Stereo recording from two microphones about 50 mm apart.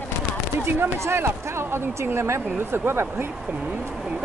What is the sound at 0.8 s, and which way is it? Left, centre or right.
Speech, right.